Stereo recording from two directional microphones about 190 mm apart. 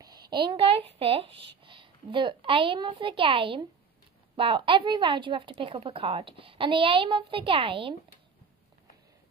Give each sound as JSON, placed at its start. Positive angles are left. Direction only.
{"t": 0.3, "sound": "a woman's voice", "side_deg": -25}